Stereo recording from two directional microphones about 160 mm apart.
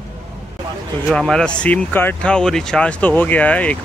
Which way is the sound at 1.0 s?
Centre (ahead or behind).